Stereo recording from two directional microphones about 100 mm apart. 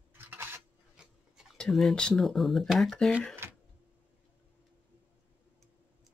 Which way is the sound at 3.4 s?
25° right (ahead or behind).